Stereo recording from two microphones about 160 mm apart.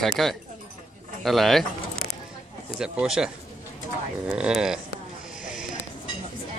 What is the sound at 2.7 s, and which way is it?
Speech, 5° right (ahead or behind).